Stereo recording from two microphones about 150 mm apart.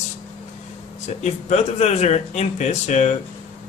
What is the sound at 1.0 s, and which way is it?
Speech, 45° left (ahead or behind).